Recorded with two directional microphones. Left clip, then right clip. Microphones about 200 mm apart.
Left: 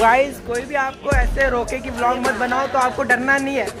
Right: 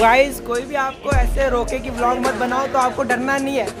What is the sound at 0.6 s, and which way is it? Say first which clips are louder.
Speech: left 2 dB; 10° right (ahead or behind).